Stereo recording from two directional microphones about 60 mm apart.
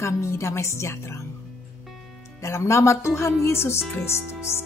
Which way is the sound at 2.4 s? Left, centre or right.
Left.